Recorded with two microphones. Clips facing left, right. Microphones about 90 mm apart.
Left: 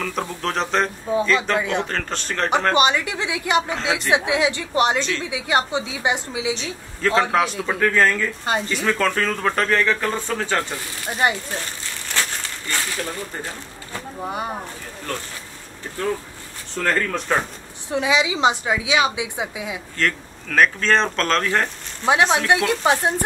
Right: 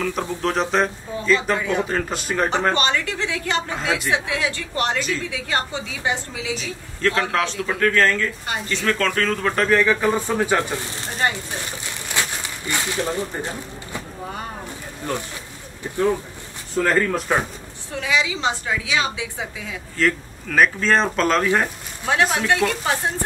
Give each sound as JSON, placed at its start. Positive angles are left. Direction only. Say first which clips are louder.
{"t": 0.0, "sound": "speech", "louder": "right 2 dB", "side_deg": 0}
{"t": 2.7, "sound": "a woman's voice", "louder": "left 3 dB", "side_deg": 15}
{"t": 6.5, "sound": "speech", "louder": "even", "side_deg": 0}
{"t": 7.1, "sound": "a woman's voice", "louder": "left 3 dB", "side_deg": 15}
{"t": 11.2, "sound": "a woman's voice", "louder": "left 2 dB", "side_deg": 15}
{"t": 12.1, "sound": "a sound", "louder": "even", "side_deg": -15}
{"t": 14.2, "sound": "a woman's voice", "louder": "left 6 dB", "side_deg": 15}
{"t": 15.1, "sound": "speech", "louder": "right 3 dB", "side_deg": -15}
{"t": 16.7, "sound": "speech", "louder": "right 3 dB", "side_deg": -5}
{"t": 17.9, "sound": "a woman's voice", "louder": "left 3 dB", "side_deg": 20}
{"t": 20.0, "sound": "speech", "louder": "right 3 dB", "side_deg": -5}
{"t": 22.1, "sound": "a woman's voice", "louder": "left 2 dB", "side_deg": 15}